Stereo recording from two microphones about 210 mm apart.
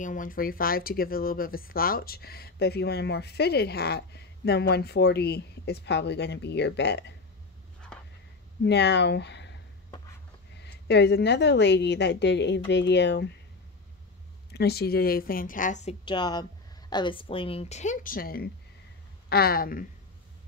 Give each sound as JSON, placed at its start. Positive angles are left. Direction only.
{"t": 0.0, "sound": "speech", "side_deg": 40}
{"t": 7.9, "sound": "a sound", "side_deg": 5}
{"t": 8.6, "sound": "speech", "side_deg": 55}
{"t": 10.6, "sound": "a woman's voice", "side_deg": 55}
{"t": 14.5, "sound": "speech", "side_deg": 50}